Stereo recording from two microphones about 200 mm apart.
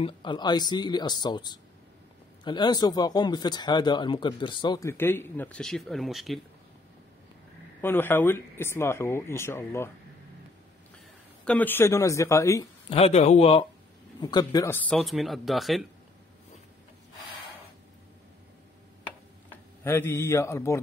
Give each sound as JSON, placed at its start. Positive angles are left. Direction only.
{"t": 0.0, "sound": "speech", "side_deg": 25}
{"t": 7.8, "sound": "speech", "side_deg": 10}
{"t": 11.4, "sound": "speech", "side_deg": 10}
{"t": 12.9, "sound": "a man's voice", "side_deg": 30}
{"t": 19.8, "sound": "speech", "side_deg": 10}